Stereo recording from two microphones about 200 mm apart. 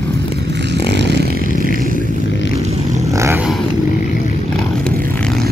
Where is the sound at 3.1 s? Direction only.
15° right (ahead or behind).